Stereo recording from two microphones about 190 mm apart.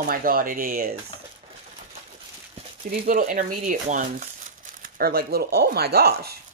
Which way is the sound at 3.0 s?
45° right (ahead or behind).